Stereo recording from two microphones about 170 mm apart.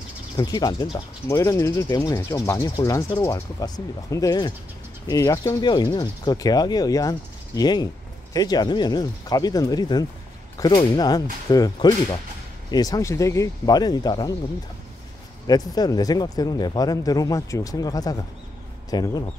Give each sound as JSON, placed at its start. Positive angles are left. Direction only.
{"t": 0.4, "sound": "speech", "side_deg": 25}
{"t": 15.4, "sound": "speech", "side_deg": 25}